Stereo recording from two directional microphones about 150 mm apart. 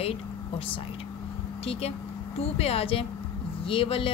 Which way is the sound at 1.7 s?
45° left (ahead or behind).